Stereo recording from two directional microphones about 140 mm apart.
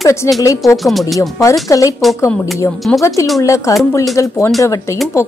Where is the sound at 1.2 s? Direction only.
20° left (ahead or behind).